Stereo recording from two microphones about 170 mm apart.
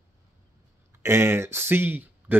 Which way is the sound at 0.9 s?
15° right (ahead or behind).